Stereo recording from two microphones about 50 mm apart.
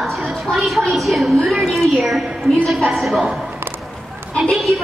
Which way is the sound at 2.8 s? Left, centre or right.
Centre.